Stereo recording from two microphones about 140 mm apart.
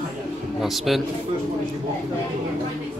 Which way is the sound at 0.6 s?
Centre (ahead or behind).